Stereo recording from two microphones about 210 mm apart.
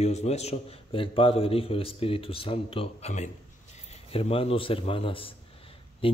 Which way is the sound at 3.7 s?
30° left (ahead or behind).